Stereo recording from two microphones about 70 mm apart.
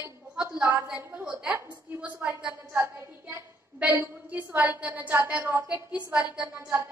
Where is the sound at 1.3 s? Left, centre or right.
Centre.